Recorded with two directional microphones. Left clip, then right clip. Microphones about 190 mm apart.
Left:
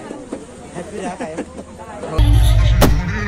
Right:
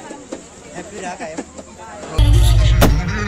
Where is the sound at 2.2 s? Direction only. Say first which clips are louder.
Right 1 dB; 60° right (ahead or behind).